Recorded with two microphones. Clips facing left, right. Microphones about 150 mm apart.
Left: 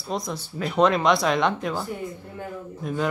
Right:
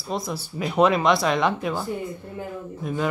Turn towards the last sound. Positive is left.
turn(degrees=0)  # may be behind; listen again after turning